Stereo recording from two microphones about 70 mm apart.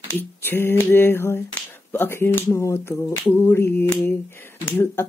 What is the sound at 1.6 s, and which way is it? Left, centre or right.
Speech, left.